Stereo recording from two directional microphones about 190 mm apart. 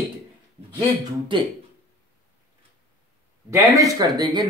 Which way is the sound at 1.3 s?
25° right (ahead or behind).